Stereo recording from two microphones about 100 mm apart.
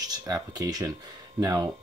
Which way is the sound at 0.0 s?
40° right (ahead or behind).